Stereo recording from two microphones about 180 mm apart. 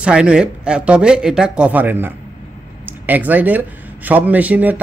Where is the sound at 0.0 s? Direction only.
5° right (ahead or behind).